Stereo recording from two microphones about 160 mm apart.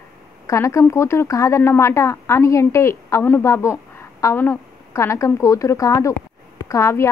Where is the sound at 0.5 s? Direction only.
20° left (ahead or behind).